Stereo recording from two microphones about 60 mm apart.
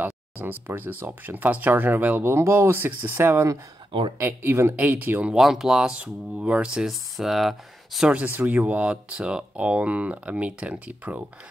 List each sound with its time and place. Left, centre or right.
0.0 s speech: right
2.3 s speech: right
4.7 s speech: right
5.4 s speech: centre
5.9 s speech: centre
6.9 s speech: centre
8.1 s speech: right